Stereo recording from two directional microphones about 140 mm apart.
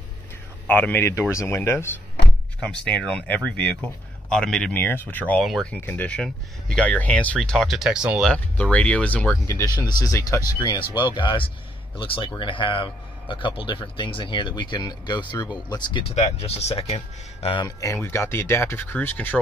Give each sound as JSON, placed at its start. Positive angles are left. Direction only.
{"t": 0.7, "sound": "a man's voice", "side_deg": 10}
{"t": 2.6, "sound": "a man's voice", "side_deg": 10}
{"t": 5.8, "sound": "speech", "side_deg": 15}
{"t": 8.3, "sound": "a man's voice", "side_deg": 10}
{"t": 9.8, "sound": "a man's voice", "side_deg": 25}
{"t": 16.2, "sound": "speech", "side_deg": 50}
{"t": 17.6, "sound": "a man's voice", "side_deg": 25}